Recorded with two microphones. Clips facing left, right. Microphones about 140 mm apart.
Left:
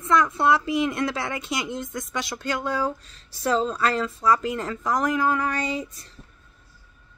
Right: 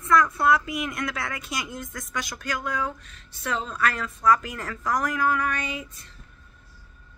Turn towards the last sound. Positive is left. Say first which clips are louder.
# left 6 dB
turn(degrees=35)  # may be behind; listen again after turning